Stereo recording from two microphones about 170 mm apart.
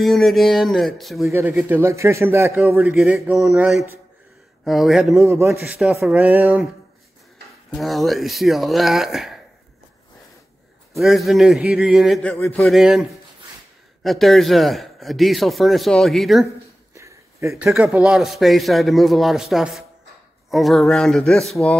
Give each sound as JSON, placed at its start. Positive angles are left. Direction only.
{"t": 0.0, "sound": "a man's voice", "side_deg": 0}
{"t": 1.3, "sound": "a man's voice", "side_deg": -15}
{"t": 5.1, "sound": "a man's voice", "side_deg": -15}
{"t": 5.6, "sound": "a man's voice", "side_deg": -5}
{"t": 7.7, "sound": "a man's voice", "side_deg": 0}
{"t": 11.0, "sound": "a man's voice", "side_deg": 0}
{"t": 12.7, "sound": "a man's voice", "side_deg": 0}
{"t": 14.0, "sound": "a man's voice", "side_deg": 0}
{"t": 16.9, "sound": "a sound", "side_deg": -15}
{"t": 17.6, "sound": "a man's voice", "side_deg": -5}